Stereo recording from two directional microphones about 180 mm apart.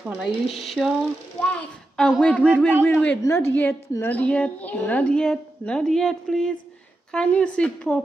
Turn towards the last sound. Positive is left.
turn(degrees=5)  # may be behind; listen again after turning